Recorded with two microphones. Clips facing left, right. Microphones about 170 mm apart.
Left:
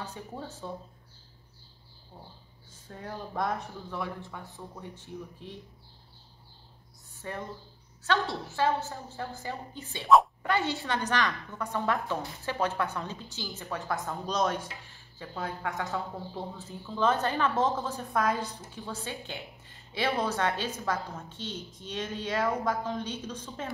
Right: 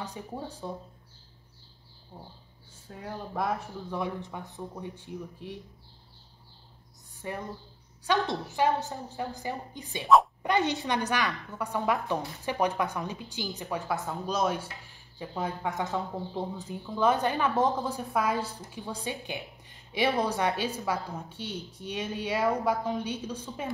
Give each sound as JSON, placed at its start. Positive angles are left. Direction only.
{"t": 0.0, "sound": "a woman's voice", "side_deg": -15}
{"t": 2.1, "sound": "a woman's voice", "side_deg": -15}
{"t": 3.9, "sound": "a woman's voice", "side_deg": -15}
{"t": 7.2, "sound": "a woman's voice", "side_deg": -15}
{"t": 13.9, "sound": "a woman's voice", "side_deg": -5}